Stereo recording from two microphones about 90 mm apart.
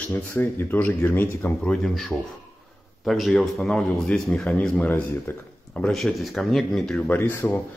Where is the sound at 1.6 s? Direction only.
5° left (ahead or behind); by 5.4 s 25° left (ahead or behind).